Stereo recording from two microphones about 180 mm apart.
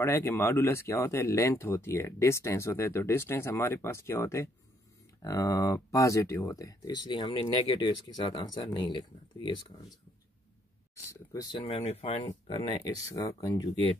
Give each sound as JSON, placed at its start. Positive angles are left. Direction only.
{"t": 0.0, "sound": "speech", "side_deg": 15}
{"t": 11.6, "sound": "speech", "side_deg": 35}
{"t": 12.8, "sound": "speech", "side_deg": 20}